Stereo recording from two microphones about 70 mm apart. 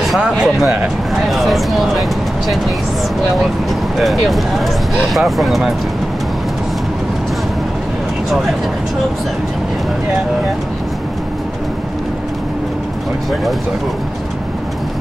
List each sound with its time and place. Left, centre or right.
0.4 s speech: centre
4.0 s speech: centre